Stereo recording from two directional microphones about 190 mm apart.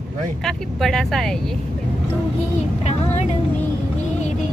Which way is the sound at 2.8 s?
35° left (ahead or behind).